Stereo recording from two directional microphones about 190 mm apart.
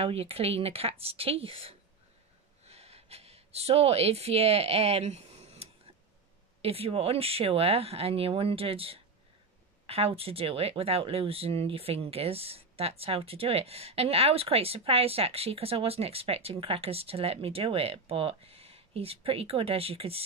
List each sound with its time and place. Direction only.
0.0 s speech: 30° right (ahead or behind)